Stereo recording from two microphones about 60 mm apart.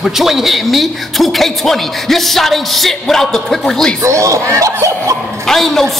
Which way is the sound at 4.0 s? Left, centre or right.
Right.